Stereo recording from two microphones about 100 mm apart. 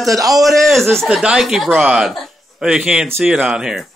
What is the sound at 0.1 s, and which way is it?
Speech, 35° right (ahead or behind).